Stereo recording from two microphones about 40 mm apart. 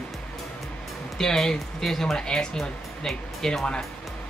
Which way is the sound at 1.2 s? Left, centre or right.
Centre.